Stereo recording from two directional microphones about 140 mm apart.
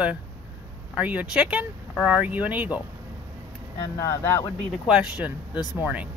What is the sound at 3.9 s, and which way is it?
Speech, 20° left (ahead or behind).